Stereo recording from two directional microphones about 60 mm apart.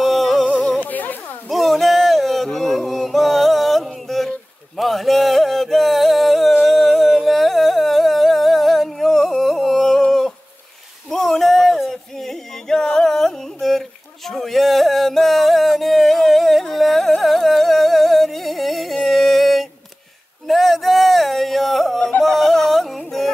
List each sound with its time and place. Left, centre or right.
0.0 s music: centre
0.8 s music: left
1.5 s music: centre
6.6 s carnatic music: centre
11.1 s a sound: centre
19.0 s music: centre
20.4 s a sound: centre
22.2 s music: centre